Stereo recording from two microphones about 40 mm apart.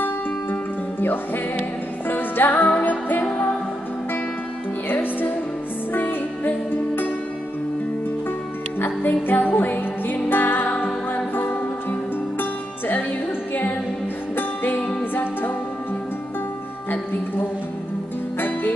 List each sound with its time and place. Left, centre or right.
1.0 s music: left
4.8 s music: left
8.7 s music: left
14.3 s music: left
14.8 s music: left